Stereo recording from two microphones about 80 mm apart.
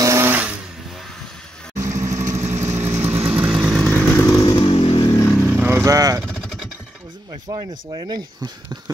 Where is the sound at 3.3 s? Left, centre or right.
Centre.